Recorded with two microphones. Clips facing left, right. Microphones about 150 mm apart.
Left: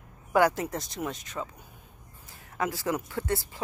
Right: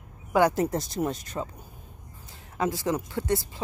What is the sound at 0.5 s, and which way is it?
Speech, 40° right (ahead or behind).